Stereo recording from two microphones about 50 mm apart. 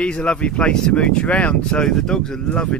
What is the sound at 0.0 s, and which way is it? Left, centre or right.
Speech, left.